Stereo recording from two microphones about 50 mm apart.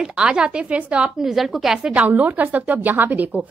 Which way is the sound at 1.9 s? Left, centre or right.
Right.